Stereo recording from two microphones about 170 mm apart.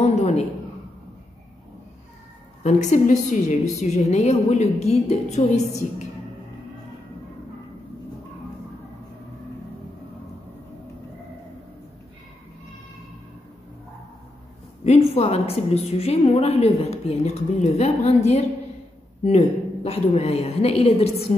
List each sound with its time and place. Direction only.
0.0 s a sound: 40° left (ahead or behind)
2.6 s a woman's voice: 45° left (ahead or behind)
14.8 s a woman's voice: 40° left (ahead or behind)